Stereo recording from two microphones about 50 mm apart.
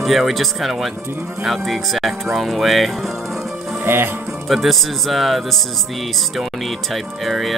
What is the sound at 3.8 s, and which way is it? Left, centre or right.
Speech, right.